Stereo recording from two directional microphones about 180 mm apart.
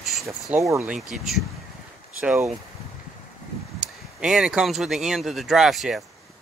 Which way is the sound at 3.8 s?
5° right (ahead or behind).